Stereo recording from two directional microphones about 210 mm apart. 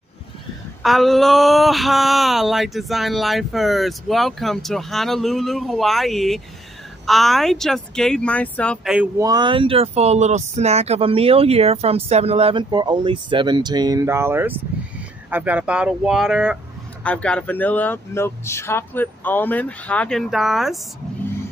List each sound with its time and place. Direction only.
0.8 s speech: centre (ahead or behind)
9.2 s speech: 20° right (ahead or behind); by 20.8 s centre (ahead or behind)